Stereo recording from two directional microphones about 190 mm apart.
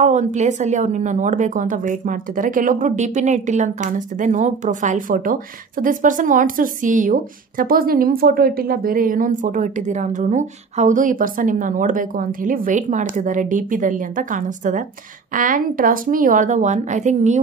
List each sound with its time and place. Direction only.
0.0 s a woman's voice: 40° right (ahead or behind)